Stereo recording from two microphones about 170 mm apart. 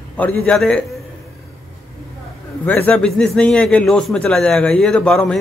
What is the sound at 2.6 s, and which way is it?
A man's voice, 10° left (ahead or behind).